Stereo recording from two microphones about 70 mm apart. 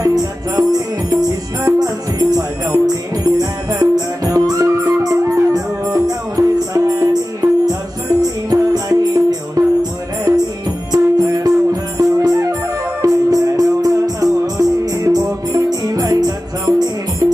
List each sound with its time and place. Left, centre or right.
0.0 s music: right